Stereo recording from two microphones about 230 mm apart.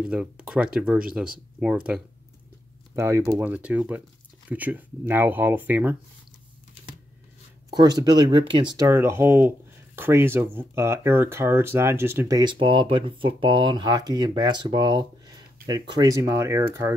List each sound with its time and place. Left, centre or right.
0.0 s speech: centre
3.0 s speech: centre
7.7 s speech: centre